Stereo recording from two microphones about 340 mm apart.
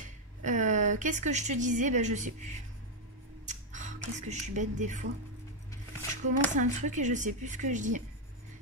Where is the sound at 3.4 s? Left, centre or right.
Right.